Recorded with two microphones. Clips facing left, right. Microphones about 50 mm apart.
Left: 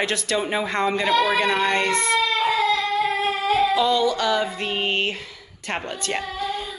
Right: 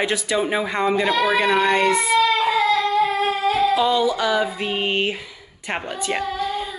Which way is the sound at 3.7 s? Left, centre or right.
Centre.